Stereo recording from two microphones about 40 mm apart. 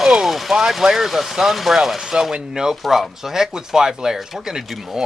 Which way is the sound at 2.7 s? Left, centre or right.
Centre.